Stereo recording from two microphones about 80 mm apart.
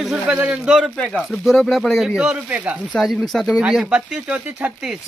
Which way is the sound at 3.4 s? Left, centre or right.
Centre.